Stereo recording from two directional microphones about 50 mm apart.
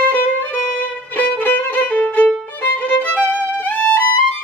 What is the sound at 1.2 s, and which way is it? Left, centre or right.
Violin, left.